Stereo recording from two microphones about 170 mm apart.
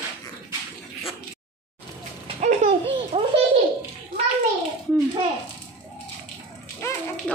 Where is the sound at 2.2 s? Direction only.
45° right (ahead or behind).